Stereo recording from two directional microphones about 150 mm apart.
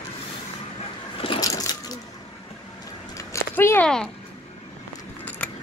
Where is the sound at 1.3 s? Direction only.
25° left (ahead or behind).